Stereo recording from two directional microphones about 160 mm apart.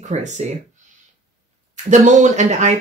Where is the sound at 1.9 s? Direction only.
50° right (ahead or behind).